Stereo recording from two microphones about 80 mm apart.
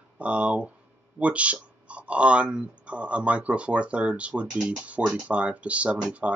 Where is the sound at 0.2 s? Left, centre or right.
Centre.